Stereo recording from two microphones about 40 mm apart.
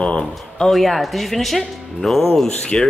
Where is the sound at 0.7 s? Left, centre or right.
Centre.